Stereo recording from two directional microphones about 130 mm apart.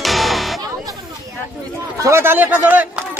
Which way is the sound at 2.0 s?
20° right (ahead or behind).